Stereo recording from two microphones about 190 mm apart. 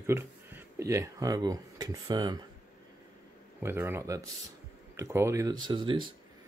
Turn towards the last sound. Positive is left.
turn(degrees=-25)  # may be behind; listen again after turning